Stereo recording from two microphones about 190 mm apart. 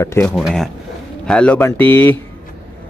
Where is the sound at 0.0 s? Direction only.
15° left (ahead or behind).